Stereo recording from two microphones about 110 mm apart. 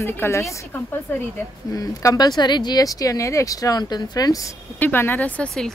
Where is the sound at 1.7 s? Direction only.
30° left (ahead or behind).